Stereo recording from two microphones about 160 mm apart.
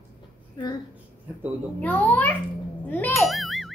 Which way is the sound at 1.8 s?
10° left (ahead or behind).